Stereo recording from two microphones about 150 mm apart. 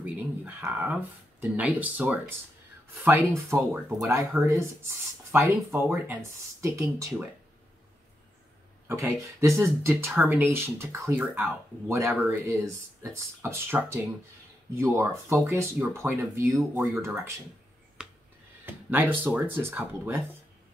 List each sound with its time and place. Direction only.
0.0 s speech: 15° right (ahead or behind)
8.8 s speech: 15° right (ahead or behind)
14.8 s speech: 15° right (ahead or behind)
18.0 s a sound: 5° right (ahead or behind)
18.7 s speech: 15° right (ahead or behind)